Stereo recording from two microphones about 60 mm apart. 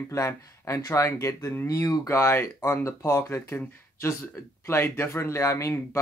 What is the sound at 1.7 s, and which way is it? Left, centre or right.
Speech, left.